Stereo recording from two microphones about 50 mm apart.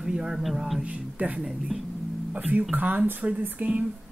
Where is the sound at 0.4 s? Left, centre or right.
Centre.